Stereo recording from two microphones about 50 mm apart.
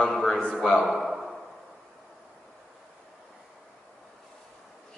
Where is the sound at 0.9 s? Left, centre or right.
Centre.